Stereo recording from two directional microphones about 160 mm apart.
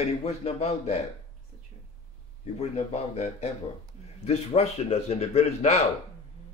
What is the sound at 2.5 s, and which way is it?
Speech, 40° left (ahead or behind).